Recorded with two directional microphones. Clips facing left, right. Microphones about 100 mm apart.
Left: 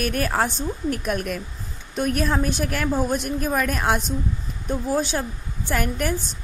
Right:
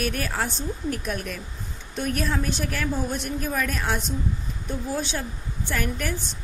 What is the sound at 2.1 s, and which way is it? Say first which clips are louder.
A woman's voice: left 3 dB; 45° left (ahead or behind).